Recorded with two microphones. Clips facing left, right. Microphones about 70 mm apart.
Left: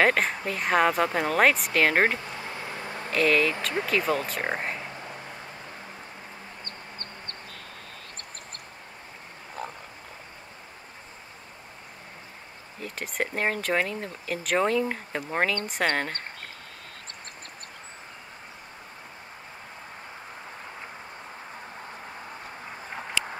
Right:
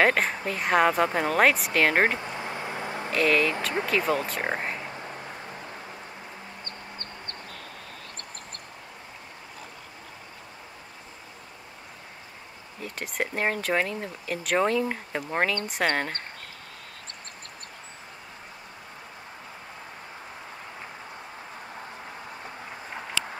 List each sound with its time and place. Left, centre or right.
0.0 s speech: centre
2.1 s a sound: right
3.1 s speech: centre
4.9 s vehicle: right
6.6 s chicken: right
12.8 s speech: centre